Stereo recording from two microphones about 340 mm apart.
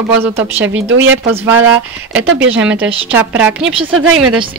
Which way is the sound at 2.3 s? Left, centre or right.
Right.